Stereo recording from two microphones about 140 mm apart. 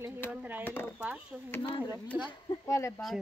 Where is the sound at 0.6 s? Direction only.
15° left (ahead or behind).